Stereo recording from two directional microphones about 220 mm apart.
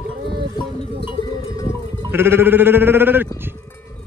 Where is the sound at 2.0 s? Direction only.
10° right (ahead or behind).